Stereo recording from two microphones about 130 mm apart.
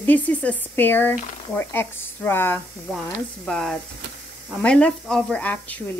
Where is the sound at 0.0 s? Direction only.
10° left (ahead or behind).